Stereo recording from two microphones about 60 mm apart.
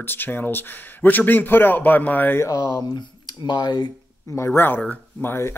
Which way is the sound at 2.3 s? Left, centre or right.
Left.